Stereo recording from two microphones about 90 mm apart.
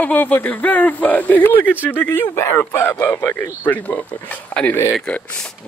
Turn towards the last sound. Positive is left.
turn(degrees=15)  # may be behind; listen again after turning